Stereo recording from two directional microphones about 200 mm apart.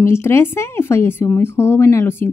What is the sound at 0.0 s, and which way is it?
A woman's voice, 15° left (ahead or behind).